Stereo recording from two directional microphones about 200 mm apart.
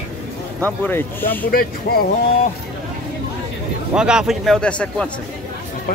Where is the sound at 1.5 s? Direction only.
50° left (ahead or behind).